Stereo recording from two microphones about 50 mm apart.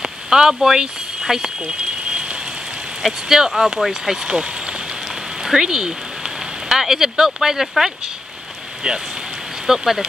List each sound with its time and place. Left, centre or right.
0.0 s a sound: centre
3.0 s speech: centre
8.8 s speech: centre